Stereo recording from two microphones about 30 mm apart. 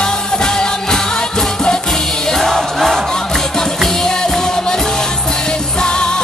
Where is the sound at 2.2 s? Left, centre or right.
Centre.